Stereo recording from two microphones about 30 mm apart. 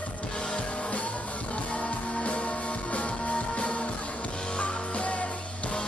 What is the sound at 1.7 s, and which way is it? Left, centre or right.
Music, left.